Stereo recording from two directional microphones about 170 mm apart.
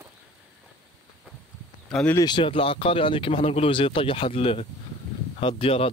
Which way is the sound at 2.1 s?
25° left (ahead or behind).